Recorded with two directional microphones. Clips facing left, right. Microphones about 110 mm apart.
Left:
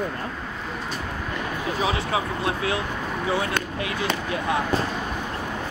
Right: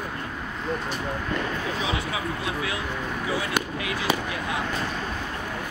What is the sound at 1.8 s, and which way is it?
Speech, 35° left (ahead or behind).